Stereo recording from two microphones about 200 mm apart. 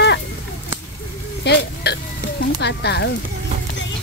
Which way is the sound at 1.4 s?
55° left (ahead or behind).